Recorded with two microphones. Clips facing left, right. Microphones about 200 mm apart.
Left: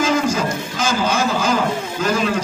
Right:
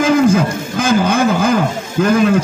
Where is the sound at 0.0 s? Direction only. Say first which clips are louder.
Right 7 dB; 55° right (ahead or behind).